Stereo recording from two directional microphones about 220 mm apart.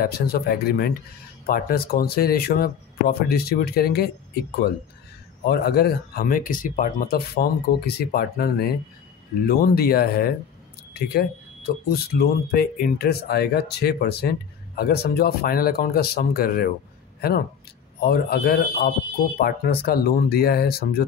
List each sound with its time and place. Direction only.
0.0 s speech: 45° left (ahead or behind)
5.4 s speech: 45° left (ahead or behind)
18.0 s speech: 45° left (ahead or behind)